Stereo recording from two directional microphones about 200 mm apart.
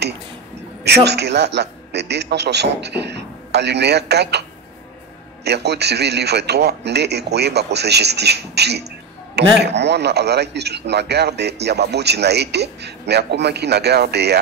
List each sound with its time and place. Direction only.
0.8 s a man's voice: 55° right (ahead or behind)